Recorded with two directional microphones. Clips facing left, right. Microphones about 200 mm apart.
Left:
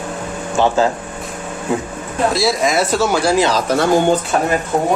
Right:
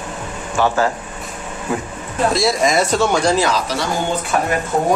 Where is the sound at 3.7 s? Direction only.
55° left (ahead or behind).